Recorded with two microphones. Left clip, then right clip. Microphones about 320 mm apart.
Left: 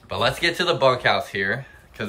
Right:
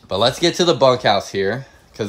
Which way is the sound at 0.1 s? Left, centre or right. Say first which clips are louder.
Right 5 dB; centre.